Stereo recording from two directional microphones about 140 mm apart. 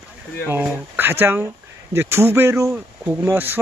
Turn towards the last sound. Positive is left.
turn(degrees=-15)  # may be behind; listen again after turning